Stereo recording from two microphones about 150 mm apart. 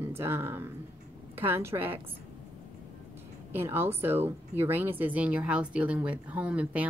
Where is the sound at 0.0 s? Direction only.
15° right (ahead or behind).